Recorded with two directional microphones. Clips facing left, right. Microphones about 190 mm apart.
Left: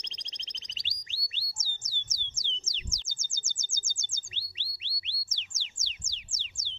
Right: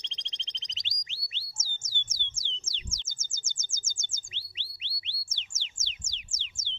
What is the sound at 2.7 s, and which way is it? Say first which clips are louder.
Chirp: even; 20° right (ahead or behind).